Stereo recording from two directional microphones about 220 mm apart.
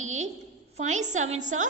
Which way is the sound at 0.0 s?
30° right (ahead or behind).